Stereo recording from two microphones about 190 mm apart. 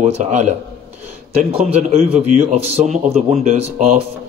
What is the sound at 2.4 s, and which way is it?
Speech, 40° right (ahead or behind).